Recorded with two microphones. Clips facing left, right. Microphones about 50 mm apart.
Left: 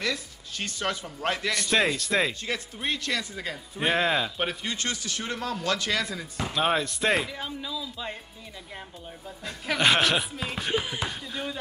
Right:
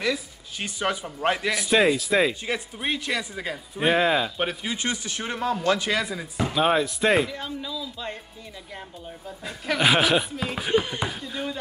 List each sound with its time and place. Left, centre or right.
0.0 s speech: centre
4.7 s speech: centre
9.4 s speech: centre